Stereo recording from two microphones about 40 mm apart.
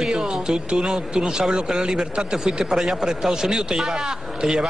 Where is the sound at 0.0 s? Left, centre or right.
Centre.